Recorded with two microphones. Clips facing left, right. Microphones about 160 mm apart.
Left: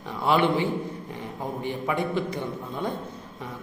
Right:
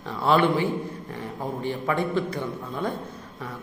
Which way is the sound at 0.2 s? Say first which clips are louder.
Right 1 dB; 15° left (ahead or behind).